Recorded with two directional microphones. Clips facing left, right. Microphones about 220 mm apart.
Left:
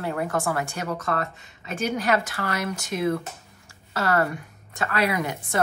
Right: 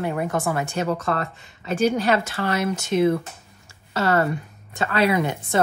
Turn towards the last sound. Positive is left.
turn(degrees=-25)  # may be behind; listen again after turning